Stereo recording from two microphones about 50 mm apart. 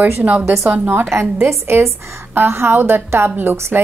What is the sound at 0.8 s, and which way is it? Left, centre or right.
A woman's voice, right.